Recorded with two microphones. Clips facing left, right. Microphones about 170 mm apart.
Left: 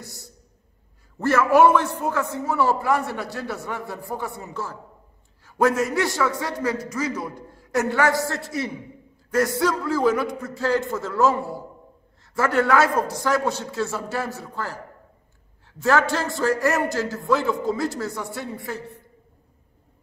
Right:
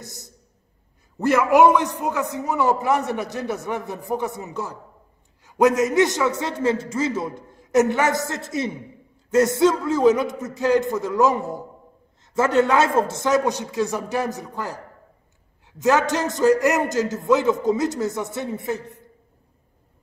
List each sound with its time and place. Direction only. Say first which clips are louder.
0.0 s a man's voice: right 1 dB; 20° right (ahead or behind)